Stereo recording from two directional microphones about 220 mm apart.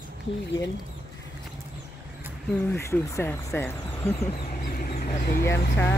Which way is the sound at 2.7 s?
15° left (ahead or behind).